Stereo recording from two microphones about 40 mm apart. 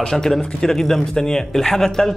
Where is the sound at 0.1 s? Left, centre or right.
Centre.